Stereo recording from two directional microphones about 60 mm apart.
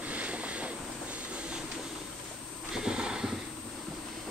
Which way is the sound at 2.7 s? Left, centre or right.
Centre.